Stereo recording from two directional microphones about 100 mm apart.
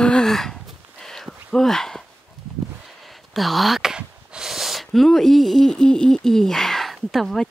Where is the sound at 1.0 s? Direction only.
5° left (ahead or behind).